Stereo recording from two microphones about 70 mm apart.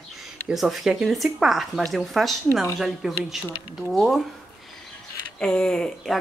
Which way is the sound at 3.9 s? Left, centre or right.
Centre.